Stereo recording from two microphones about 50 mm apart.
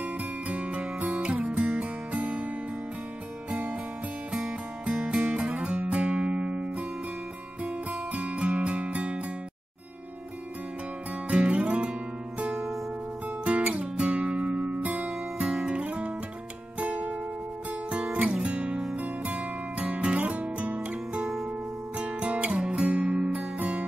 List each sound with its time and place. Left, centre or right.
0.0 s music: right
4.3 s music: centre
11.2 s music: right
12.5 s music: centre
13.4 s music: right